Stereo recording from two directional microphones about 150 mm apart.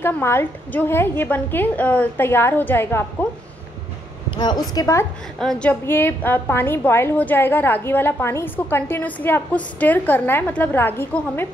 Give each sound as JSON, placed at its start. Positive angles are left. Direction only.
{"t": 0.0, "sound": "a woman's voice", "side_deg": 15}
{"t": 4.3, "sound": "speech", "side_deg": 30}
{"t": 5.4, "sound": "a woman's voice", "side_deg": 5}